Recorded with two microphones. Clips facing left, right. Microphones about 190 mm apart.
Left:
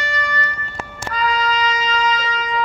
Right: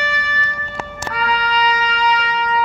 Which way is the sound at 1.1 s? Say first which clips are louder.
Even; 65° right (ahead or behind).